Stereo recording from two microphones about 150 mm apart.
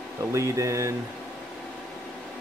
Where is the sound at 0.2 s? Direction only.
20° right (ahead or behind).